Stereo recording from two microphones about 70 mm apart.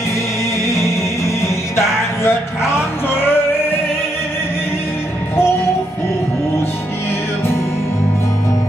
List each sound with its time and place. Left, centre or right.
0.7 s music: left
2.2 s a man's voice: left